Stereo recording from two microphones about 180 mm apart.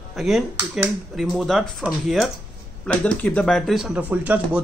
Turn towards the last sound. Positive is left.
turn(degrees=-10)  # may be behind; listen again after turning